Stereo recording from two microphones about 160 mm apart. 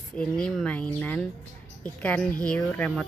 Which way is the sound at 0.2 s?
5° left (ahead or behind).